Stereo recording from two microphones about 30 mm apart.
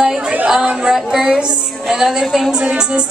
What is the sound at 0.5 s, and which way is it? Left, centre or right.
Speech, centre.